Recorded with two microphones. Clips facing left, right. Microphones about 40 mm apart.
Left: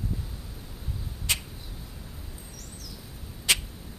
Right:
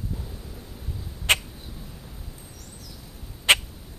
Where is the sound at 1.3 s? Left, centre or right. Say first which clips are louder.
Right 9 dB; right.